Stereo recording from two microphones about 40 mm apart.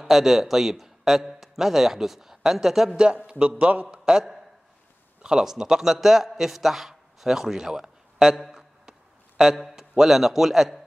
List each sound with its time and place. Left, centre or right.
0.0 s a man's voice: centre
3.3 s a man's voice: right
4.0 s a man's voice: centre
8.4 s a sound: centre
9.6 s a man's voice: centre